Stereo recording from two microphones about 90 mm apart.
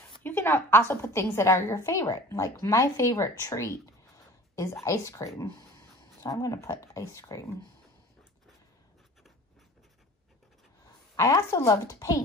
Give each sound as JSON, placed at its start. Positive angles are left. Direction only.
{"t": 0.2, "sound": "a woman's voice", "side_deg": 25}
{"t": 4.8, "sound": "speech", "side_deg": 35}
{"t": 11.1, "sound": "a woman's voice", "side_deg": 35}